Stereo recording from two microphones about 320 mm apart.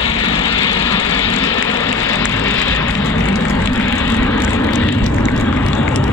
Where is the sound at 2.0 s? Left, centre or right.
Centre.